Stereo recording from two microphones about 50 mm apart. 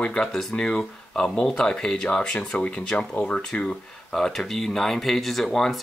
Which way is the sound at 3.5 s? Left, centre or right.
Left.